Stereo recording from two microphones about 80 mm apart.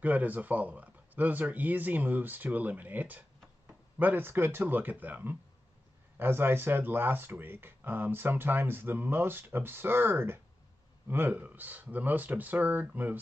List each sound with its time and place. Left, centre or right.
0.0 s speech: centre